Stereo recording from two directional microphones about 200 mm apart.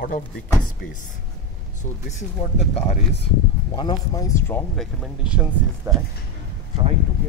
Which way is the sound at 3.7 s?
20° left (ahead or behind).